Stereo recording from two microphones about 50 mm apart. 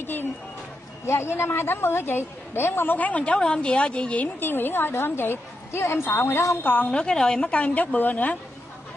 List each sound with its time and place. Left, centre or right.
0.0 s speech: left
1.0 s a woman's voice: left
3.0 s a woman's voice: left
3.3 s a woman's voice: centre
4.4 s a woman's voice: left
6.5 s a woman's voice: left
6.9 s a woman's voice: centre
7.5 s a woman's voice: left